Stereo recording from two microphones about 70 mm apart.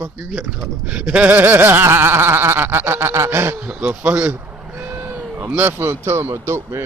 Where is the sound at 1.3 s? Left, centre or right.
Right.